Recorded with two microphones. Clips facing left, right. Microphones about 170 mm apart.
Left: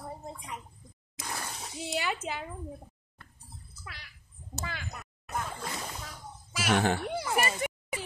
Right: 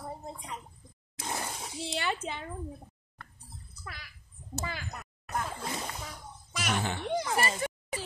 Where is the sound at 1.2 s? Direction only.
20° right (ahead or behind).